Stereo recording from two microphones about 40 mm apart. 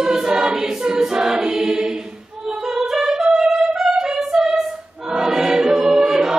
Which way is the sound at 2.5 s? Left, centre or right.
Centre.